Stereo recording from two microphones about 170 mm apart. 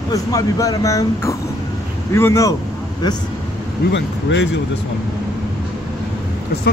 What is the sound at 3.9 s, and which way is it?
Speech, 90° left.